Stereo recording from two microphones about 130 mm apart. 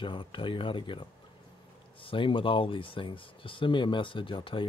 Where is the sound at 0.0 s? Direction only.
40° left (ahead or behind).